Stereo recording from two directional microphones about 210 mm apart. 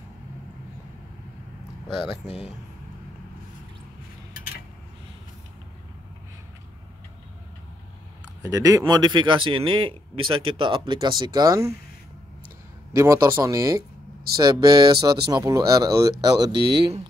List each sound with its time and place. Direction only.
8.4 s speech: 15° right (ahead or behind)
12.9 s speech: 15° right (ahead or behind)